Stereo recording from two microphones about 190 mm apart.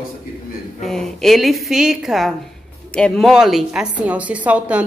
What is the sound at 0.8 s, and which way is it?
A woman's voice, centre (ahead or behind).